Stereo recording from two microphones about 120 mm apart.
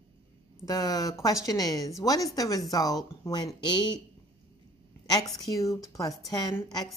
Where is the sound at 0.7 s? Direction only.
30° left (ahead or behind).